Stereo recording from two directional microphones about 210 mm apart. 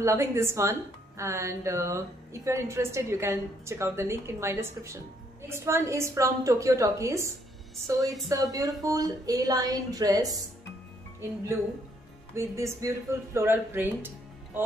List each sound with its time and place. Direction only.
0.0 s a woman's voice: 15° right (ahead or behind)
12.4 s a woman's voice: 15° right (ahead or behind)